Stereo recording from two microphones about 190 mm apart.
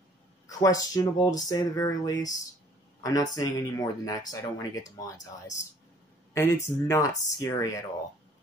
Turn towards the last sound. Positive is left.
turn(degrees=15)  # may be behind; listen again after turning